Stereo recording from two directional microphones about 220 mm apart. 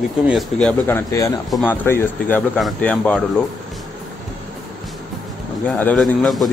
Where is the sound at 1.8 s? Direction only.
10° left (ahead or behind).